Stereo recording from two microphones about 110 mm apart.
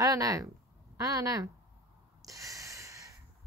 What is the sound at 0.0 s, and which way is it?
Speech, 35° right (ahead or behind).